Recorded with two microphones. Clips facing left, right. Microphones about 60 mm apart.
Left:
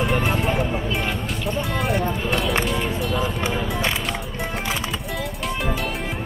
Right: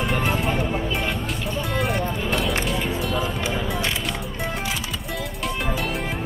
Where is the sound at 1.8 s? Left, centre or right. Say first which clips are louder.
Even; centre.